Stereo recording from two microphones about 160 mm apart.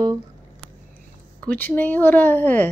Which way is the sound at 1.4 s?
10° left (ahead or behind).